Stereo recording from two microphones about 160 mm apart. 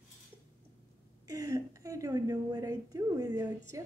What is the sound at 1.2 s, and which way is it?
A woman's voice, 20° right (ahead or behind).